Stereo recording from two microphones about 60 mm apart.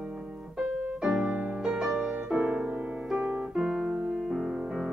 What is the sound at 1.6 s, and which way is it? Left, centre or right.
Music, centre.